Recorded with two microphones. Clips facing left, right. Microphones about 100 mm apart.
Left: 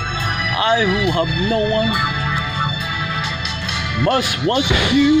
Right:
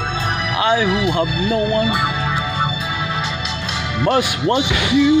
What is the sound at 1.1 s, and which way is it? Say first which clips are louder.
Speech: even; 15° right (ahead or behind).